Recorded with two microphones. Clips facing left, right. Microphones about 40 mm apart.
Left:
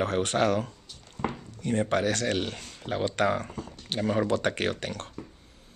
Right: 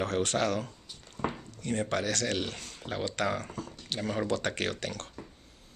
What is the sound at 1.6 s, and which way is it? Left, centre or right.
Speech, centre.